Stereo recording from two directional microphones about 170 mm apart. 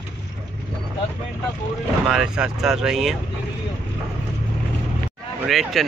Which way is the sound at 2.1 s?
5° right (ahead or behind).